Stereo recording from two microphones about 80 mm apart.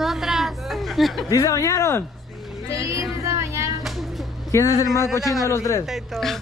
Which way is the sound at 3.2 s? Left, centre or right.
Right.